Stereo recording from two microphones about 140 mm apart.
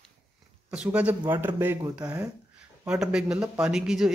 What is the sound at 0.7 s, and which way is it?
Speech, 10° right (ahead or behind).